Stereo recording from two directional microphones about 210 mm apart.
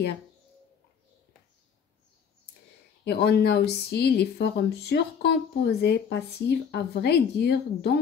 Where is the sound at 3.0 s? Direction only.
50° left (ahead or behind).